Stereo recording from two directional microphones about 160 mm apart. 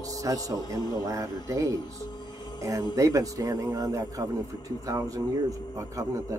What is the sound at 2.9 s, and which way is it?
Speech, 20° right (ahead or behind).